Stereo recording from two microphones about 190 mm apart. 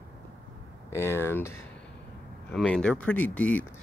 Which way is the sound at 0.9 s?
10° left (ahead or behind).